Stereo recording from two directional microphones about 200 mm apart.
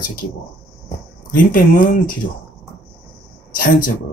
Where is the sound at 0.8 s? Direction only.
40° left (ahead or behind).